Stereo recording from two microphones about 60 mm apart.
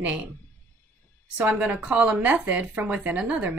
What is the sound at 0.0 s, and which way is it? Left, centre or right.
Speech, right.